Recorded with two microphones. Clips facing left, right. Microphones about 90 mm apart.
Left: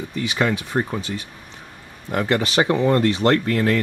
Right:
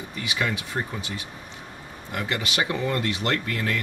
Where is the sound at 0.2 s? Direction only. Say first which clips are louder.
Left 6 dB; 35° left (ahead or behind).